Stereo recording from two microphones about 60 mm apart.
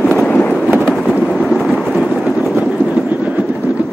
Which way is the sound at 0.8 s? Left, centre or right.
Centre.